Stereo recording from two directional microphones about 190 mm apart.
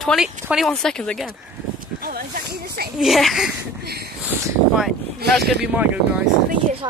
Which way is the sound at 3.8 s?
55° right (ahead or behind).